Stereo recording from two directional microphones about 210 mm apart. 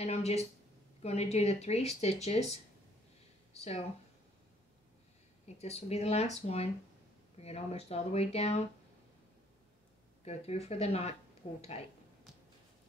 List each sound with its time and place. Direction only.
0.0 s speech: 30° left (ahead or behind)
5.6 s speech: 30° left (ahead or behind)
10.2 s speech: 30° left (ahead or behind)